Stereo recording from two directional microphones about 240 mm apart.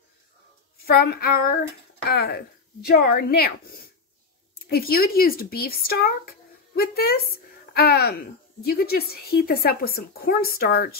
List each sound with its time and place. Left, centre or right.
0.8 s speech: left